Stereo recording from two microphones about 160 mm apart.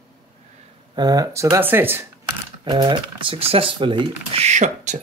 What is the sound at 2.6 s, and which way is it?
Speech, 30° right (ahead or behind).